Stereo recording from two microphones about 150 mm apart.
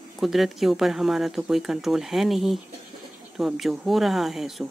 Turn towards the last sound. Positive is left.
turn(degrees=0)  # may be behind; listen again after turning